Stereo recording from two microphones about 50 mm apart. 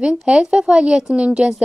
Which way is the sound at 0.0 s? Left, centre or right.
Right.